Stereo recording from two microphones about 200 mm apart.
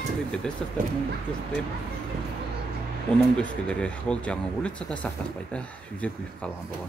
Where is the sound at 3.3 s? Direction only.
5° left (ahead or behind).